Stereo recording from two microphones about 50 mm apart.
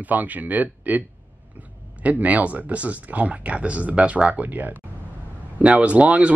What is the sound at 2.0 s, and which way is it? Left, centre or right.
Speech, right.